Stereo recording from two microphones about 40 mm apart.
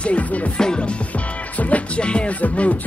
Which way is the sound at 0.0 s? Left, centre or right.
Left.